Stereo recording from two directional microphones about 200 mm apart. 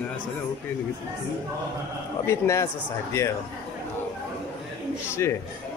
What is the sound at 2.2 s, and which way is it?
Speech, 15° left (ahead or behind).